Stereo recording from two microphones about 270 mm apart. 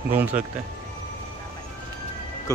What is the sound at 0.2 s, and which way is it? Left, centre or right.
Speech, centre.